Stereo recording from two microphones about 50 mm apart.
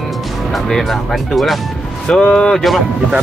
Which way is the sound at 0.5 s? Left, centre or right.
Centre.